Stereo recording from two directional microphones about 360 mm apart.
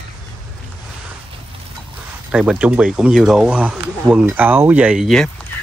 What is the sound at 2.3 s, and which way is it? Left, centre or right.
Speech, centre.